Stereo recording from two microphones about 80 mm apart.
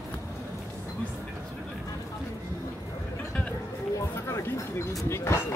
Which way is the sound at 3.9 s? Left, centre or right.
Left.